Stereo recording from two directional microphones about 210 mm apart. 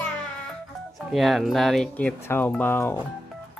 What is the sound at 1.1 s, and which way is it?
Speech, centre (ahead or behind).